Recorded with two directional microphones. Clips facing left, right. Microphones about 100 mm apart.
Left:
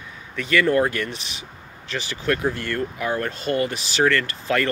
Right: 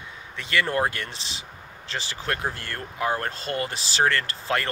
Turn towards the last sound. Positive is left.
turn(degrees=-30)  # may be behind; listen again after turning